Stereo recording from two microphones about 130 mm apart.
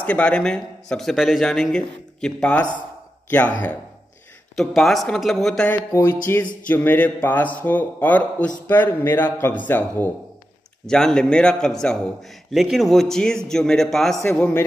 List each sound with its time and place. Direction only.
0.0 s speech: 10° left (ahead or behind)
4.6 s speech: centre (ahead or behind)
5.7 s a man's voice: 15° left (ahead or behind)